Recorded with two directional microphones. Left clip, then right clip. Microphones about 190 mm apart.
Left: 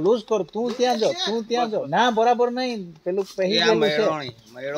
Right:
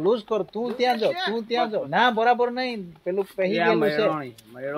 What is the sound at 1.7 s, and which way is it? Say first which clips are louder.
Speech: even; 55° left (ahead or behind).